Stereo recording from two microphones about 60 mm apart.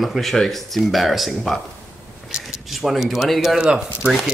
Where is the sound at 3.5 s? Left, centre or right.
Centre.